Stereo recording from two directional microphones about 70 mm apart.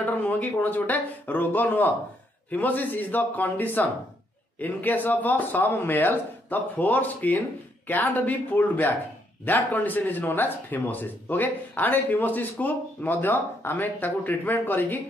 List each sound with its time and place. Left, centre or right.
0.0 s speech: left